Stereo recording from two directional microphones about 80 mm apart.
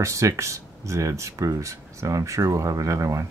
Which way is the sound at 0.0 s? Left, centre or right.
Right.